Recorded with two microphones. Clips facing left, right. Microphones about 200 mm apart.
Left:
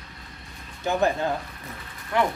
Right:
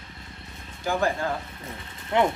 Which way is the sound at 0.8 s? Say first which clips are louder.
Left 2 dB; 20° left (ahead or behind).